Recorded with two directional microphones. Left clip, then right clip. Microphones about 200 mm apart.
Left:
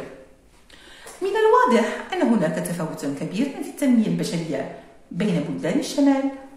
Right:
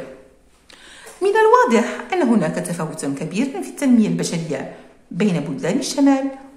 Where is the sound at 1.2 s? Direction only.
35° right (ahead or behind).